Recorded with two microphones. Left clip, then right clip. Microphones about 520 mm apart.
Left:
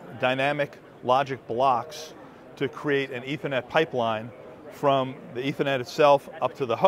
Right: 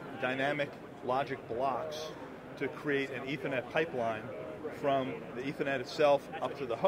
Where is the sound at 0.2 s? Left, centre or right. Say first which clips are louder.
Left 9 dB; left.